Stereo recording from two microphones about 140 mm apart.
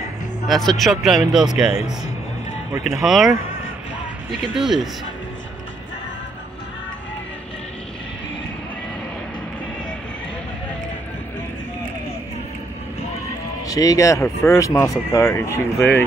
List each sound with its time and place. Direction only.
0.5 s speech: centre (ahead or behind)
3.0 s speech: centre (ahead or behind)
13.7 s speech: 25° left (ahead or behind)